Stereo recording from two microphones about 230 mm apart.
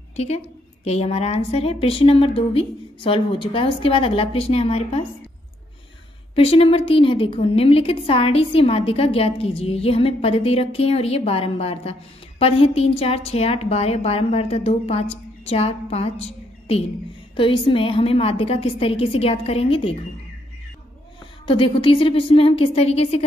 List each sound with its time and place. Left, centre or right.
0.1 s a woman's voice: left
6.3 s a woman's voice: left
21.5 s a woman's voice: left